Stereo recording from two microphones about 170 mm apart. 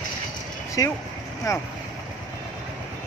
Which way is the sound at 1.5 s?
20° left (ahead or behind).